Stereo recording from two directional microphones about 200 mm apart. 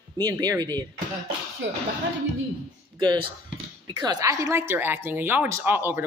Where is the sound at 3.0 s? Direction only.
20° right (ahead or behind).